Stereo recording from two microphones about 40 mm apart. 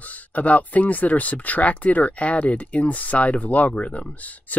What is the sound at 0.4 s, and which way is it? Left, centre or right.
Speech, left.